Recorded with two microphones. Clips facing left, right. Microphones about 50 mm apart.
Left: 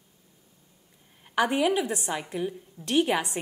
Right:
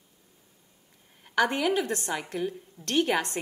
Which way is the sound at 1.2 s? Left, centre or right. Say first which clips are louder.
Left 1 dB; centre.